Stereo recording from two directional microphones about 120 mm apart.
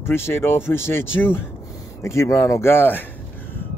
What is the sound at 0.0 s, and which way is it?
Speech, 20° left (ahead or behind).